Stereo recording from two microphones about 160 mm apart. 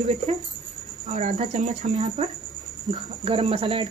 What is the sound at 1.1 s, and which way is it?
Speech, 50° right (ahead or behind).